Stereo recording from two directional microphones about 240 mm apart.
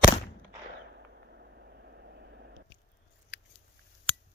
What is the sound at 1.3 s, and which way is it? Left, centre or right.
Vehicle, right.